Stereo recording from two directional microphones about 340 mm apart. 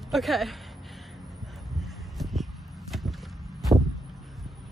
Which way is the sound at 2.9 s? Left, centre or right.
Centre.